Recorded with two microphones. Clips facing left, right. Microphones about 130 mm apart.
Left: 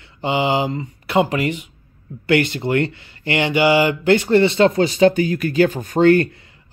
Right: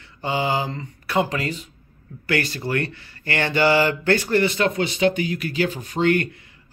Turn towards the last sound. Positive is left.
turn(degrees=40)  # may be behind; listen again after turning